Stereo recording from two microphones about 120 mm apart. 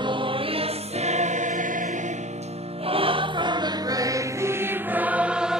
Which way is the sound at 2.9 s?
50° right (ahead or behind).